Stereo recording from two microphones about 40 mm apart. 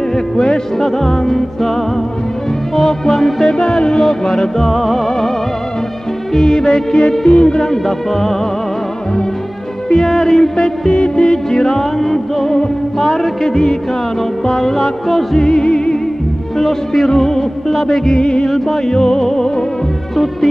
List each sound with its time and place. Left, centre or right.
0.1 s music: centre
2.9 s music: centre
3.5 s music: centre
4.6 s music: centre
6.4 s music: centre
10.0 s music: centre
11.0 s music: left; by 14.9 s centre
15.3 s music: left
16.5 s music: centre
17.7 s music: centre
18.1 s music: centre